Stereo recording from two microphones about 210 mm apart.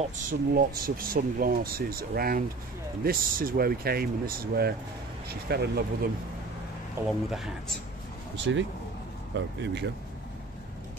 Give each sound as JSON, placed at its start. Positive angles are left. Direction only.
{"t": 0.0, "sound": "speech", "side_deg": -40}
{"t": 7.1, "sound": "speech", "side_deg": 0}
{"t": 9.3, "sound": "speech", "side_deg": -55}